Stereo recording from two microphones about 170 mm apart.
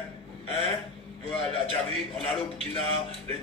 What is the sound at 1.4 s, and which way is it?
A man's voice, 35° left (ahead or behind).